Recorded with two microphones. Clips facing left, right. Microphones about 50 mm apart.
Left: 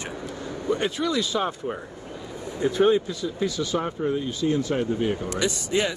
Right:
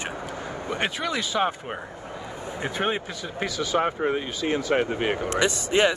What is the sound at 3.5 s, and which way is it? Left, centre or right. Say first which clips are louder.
Speech: right 5 dB; right.